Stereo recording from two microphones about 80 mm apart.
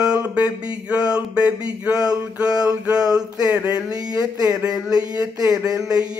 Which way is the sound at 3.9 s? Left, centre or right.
Right.